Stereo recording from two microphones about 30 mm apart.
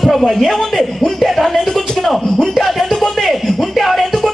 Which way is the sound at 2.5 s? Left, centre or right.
Centre.